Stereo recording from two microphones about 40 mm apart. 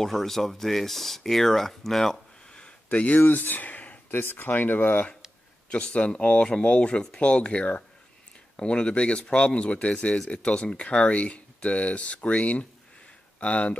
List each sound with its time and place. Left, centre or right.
0.0 s speech: centre
2.5 s a sound: left
3.3 s speech: left
4.1 s speech: left
5.7 s speech: left